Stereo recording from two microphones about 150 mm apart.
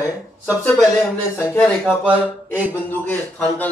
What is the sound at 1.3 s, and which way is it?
Speech, 20° left (ahead or behind).